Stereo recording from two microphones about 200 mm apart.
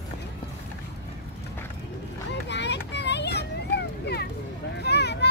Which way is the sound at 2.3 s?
60° left (ahead or behind).